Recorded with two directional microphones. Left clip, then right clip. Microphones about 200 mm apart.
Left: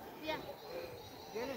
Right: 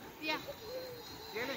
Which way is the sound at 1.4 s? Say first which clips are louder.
Right 2 dB; 25° left (ahead or behind).